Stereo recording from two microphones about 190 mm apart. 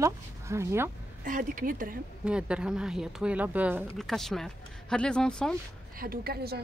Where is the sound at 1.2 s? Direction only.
45° right (ahead or behind).